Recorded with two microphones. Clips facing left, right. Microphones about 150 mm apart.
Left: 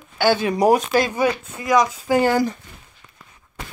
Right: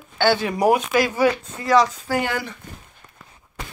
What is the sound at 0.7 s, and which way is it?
Speech, 35° left (ahead or behind).